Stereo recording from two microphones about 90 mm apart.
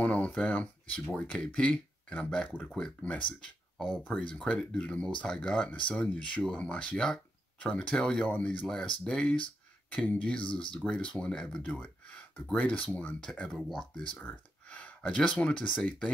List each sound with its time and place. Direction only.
0.0 s speech: 15° left (ahead or behind)
3.7 s speech: centre (ahead or behind)
4.1 s speech: 10° left (ahead or behind)
14.2 s speech: 15° left (ahead or behind)